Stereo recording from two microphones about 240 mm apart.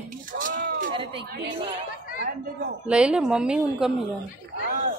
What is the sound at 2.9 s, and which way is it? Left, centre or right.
A woman's voice, centre.